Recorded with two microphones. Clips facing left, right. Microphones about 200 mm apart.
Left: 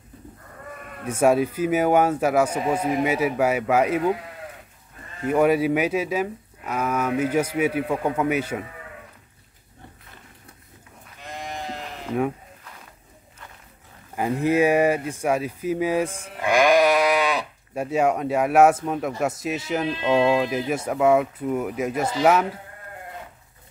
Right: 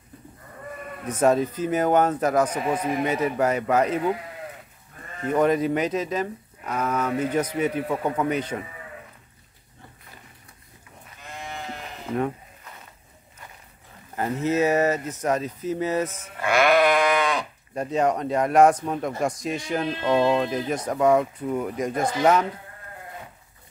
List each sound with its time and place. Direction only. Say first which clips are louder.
1.0 s speech: left 1 dB; 10° left (ahead or behind)
5.2 s speech: left 2 dB; 10° left (ahead or behind)
11.2 s livestock: left 3 dB; 35° left (ahead or behind)
14.1 s speech: left 3 dB; 15° left (ahead or behind)